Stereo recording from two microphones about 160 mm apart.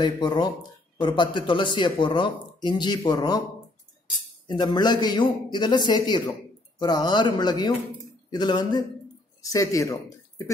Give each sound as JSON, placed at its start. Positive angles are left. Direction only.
{"t": 0.0, "sound": "speech", "side_deg": 25}
{"t": 4.5, "sound": "speech", "side_deg": 25}